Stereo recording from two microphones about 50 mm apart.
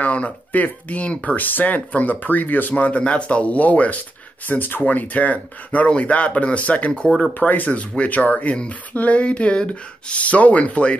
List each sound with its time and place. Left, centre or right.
0.0 s speech: left
2.7 s speech: left